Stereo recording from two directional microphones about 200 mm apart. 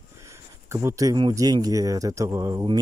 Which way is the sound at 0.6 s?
15° right (ahead or behind).